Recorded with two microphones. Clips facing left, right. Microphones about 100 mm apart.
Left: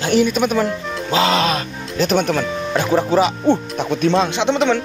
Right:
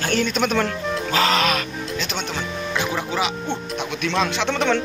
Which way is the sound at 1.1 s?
30° left (ahead or behind).